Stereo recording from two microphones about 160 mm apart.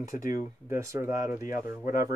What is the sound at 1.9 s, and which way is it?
Speech, 65° left (ahead or behind).